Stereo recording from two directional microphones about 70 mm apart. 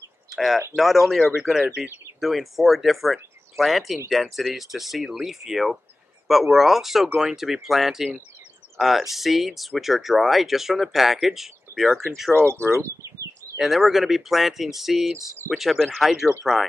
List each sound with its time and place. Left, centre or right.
0.3 s a sound: centre
0.7 s speech: centre
12.4 s speech: right
13.6 s speech: centre